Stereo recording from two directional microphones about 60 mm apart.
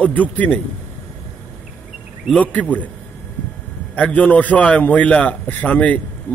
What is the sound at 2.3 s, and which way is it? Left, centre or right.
Speech, left.